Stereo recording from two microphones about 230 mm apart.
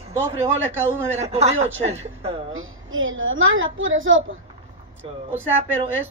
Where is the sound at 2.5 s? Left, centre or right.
Right.